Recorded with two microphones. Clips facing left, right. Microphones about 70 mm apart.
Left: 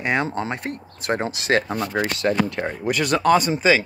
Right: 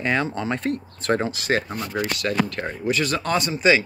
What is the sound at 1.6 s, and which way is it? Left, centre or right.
Speech, left.